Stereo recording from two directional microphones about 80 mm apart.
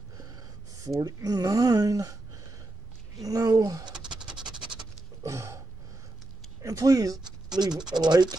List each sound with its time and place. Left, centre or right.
0.8 s speech: right
4.2 s scratch: centre
5.2 s a sound: right
6.6 s speech: right
7.9 s speech: right